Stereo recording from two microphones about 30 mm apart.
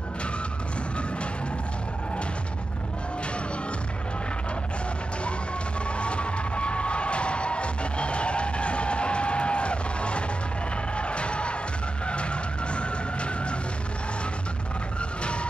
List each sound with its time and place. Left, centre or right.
5.9 s music: left
12.1 s vehicle: left
15.0 s vehicle: left